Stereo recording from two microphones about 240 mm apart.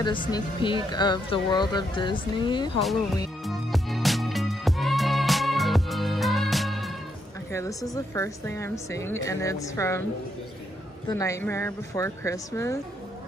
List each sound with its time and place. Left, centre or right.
0.0 s speech: centre
3.4 s music: centre
7.5 s a woman's voice: centre
11.1 s a woman's voice: centre